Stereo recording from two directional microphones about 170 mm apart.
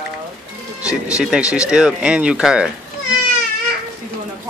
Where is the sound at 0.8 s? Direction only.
5° right (ahead or behind).